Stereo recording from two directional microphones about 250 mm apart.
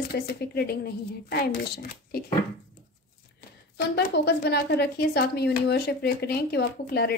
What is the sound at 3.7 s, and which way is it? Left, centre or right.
Speech, left.